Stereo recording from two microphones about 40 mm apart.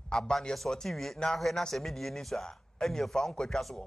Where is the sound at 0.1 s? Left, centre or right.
Centre.